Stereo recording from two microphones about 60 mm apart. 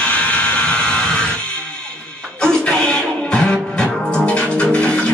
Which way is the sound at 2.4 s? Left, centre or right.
Centre.